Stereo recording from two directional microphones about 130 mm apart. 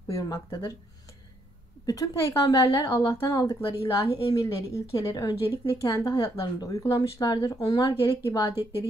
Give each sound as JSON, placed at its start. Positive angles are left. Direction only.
{"t": 0.1, "sound": "a woman's voice", "side_deg": 25}
{"t": 1.9, "sound": "a woman's voice", "side_deg": 30}